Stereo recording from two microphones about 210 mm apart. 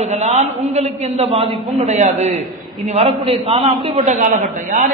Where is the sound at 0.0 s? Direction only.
30° right (ahead or behind).